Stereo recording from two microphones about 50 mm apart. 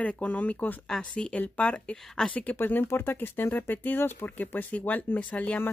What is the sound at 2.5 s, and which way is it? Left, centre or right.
Speech, left.